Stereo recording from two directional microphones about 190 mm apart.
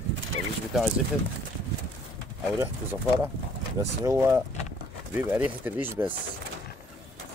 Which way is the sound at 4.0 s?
15° right (ahead or behind).